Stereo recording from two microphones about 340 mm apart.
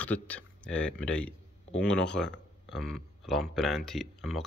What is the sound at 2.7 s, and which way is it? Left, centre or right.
Speech, centre.